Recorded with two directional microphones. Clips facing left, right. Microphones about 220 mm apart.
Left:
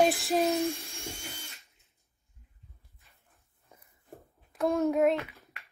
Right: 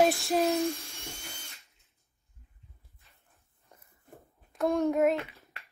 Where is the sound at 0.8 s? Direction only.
30° left (ahead or behind).